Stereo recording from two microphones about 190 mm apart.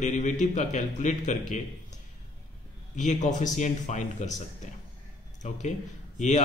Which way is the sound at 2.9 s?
40° left (ahead or behind).